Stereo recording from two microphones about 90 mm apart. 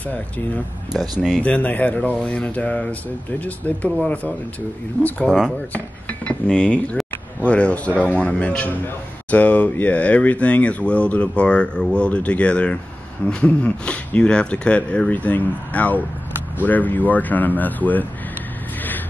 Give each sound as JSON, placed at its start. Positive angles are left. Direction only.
{"t": 0.9, "sound": "speech", "side_deg": 0}
{"t": 1.4, "sound": "a man's voice", "side_deg": 15}
{"t": 5.2, "sound": "speech", "side_deg": -5}
{"t": 5.7, "sound": "a man's voice", "side_deg": 15}